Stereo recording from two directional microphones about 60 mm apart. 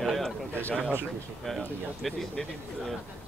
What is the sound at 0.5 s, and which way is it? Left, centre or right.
Speech, left.